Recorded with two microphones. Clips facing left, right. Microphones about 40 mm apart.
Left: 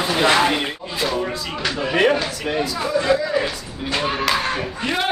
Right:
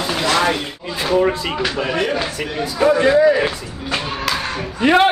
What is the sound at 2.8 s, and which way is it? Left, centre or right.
Speech, right.